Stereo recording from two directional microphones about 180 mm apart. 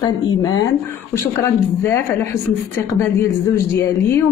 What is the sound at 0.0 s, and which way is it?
A woman's voice, 25° left (ahead or behind).